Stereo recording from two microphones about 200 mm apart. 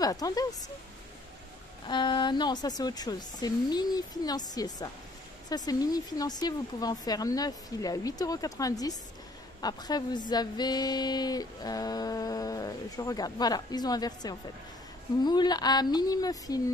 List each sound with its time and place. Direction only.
0.0 s a woman's voice: 20° left (ahead or behind)
1.9 s female singing: 25° left (ahead or behind)